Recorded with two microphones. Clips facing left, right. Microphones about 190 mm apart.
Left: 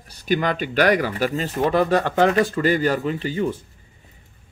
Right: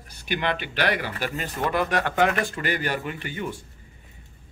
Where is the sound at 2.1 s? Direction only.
35° left (ahead or behind).